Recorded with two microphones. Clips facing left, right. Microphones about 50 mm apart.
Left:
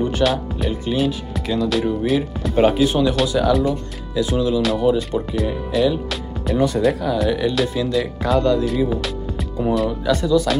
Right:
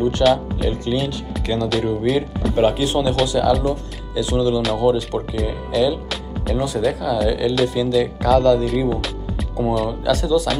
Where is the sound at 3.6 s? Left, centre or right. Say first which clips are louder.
Even; left.